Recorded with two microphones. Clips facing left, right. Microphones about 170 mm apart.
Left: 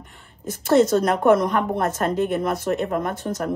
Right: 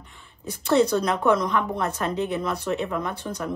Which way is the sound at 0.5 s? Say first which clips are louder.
Left 3 dB; 50° left (ahead or behind).